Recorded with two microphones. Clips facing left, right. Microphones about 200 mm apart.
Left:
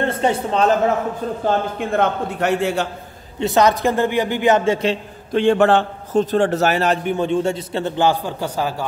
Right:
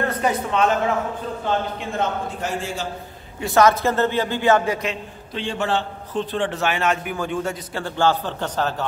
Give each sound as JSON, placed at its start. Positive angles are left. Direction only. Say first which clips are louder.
{"t": 0.0, "sound": "a woman's voice", "louder": "left 3 dB", "side_deg": 25}
{"t": 1.4, "sound": "a man's voice", "louder": "left 4 dB", "side_deg": 55}
{"t": 3.3, "sound": "a man's voice", "louder": "left 1 dB", "side_deg": 20}
{"t": 5.3, "sound": "a man's voice", "louder": "left 10 dB", "side_deg": 55}